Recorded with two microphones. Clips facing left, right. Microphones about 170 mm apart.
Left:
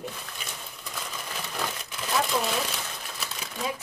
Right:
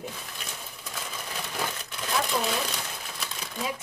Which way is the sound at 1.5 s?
Centre (ahead or behind).